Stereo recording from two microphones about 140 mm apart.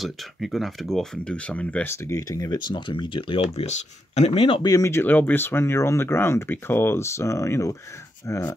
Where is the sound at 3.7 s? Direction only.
50° left (ahead or behind).